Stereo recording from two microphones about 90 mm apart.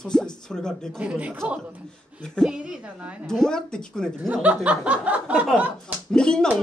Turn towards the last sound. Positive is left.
turn(degrees=10)  # may be behind; listen again after turning